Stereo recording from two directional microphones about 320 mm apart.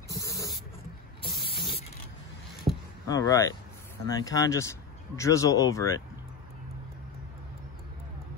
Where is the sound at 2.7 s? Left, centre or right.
Centre.